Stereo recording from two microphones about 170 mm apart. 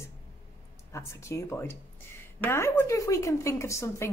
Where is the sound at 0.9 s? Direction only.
15° left (ahead or behind).